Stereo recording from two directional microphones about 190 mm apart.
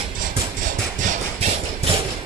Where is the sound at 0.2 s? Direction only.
45° right (ahead or behind).